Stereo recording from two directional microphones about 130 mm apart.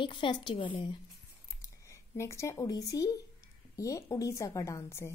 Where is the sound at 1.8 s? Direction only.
20° left (ahead or behind).